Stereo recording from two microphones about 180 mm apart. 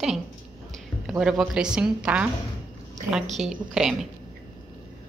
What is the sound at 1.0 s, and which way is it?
A woman's voice, centre (ahead or behind).